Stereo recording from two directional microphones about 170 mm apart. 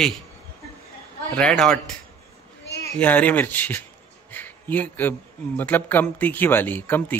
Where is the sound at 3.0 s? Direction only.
10° left (ahead or behind).